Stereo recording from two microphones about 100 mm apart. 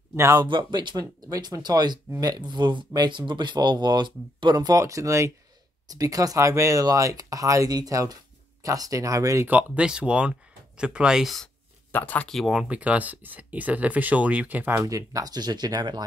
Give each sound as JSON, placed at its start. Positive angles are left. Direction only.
{"t": 0.1, "sound": "speech", "side_deg": -30}
{"t": 0.4, "sound": "speech", "side_deg": -50}
{"t": 9.5, "sound": "speech", "side_deg": -15}
{"t": 11.9, "sound": "speech", "side_deg": 15}
{"t": 12.3, "sound": "speech", "side_deg": 0}
{"t": 14.7, "sound": "speech", "side_deg": -35}